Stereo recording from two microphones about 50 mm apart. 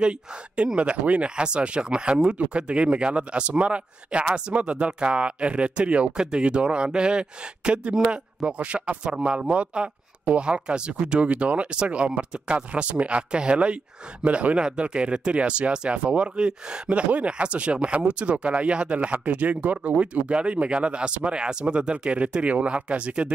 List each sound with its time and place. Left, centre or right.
0.7 s speech: right